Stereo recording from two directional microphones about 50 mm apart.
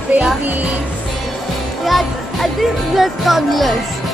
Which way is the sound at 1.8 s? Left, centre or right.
Centre.